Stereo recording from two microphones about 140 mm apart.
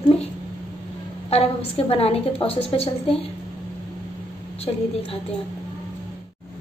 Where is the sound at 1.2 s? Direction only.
45° left (ahead or behind).